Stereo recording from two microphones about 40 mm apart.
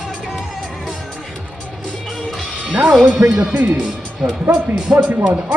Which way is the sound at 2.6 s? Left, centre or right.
Right.